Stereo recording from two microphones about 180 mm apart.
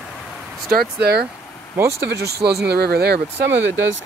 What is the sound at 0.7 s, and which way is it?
Speech, 65° right (ahead or behind).